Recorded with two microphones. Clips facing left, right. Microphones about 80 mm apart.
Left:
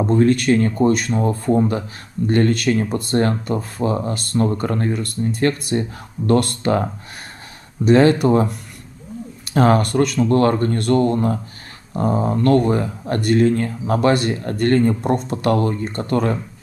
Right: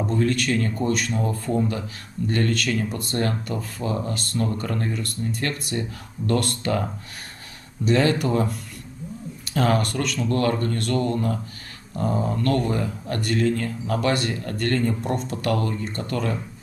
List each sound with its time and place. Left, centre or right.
0.0 s speech: left
9.5 s speech: left